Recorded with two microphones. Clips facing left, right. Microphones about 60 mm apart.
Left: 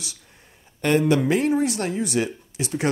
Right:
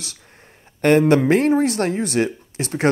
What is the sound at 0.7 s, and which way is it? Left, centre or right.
Speech, right.